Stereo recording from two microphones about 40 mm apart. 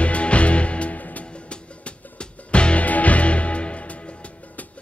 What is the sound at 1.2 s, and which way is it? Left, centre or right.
Music, left.